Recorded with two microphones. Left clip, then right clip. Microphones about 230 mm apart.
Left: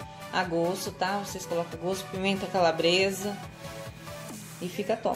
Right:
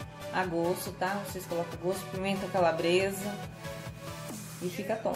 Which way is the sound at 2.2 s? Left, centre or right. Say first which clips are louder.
Left 3 dB; left.